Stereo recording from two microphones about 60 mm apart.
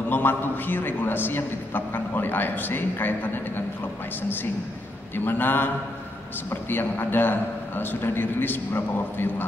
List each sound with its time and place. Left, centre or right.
0.1 s a man's voice: left
5.1 s a man's voice: left